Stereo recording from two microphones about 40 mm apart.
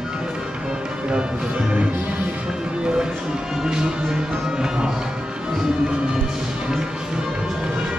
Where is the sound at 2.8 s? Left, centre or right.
Centre.